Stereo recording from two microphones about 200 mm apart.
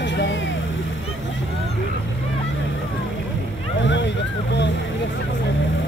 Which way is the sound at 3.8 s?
65° left (ahead or behind).